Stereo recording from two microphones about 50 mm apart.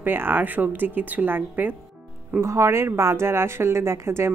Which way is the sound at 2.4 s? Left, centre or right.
Right.